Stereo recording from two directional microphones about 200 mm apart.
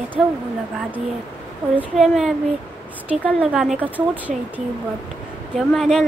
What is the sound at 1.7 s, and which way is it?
A woman's voice, centre (ahead or behind).